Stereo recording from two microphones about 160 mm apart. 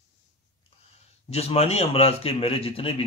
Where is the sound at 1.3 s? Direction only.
40° left (ahead or behind).